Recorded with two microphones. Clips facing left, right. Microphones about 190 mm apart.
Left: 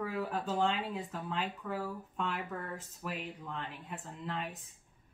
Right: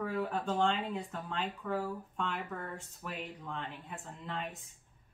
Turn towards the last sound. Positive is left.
turn(degrees=0)  # may be behind; listen again after turning